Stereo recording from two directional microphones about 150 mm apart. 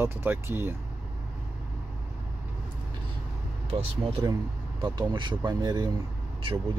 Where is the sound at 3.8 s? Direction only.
40° right (ahead or behind).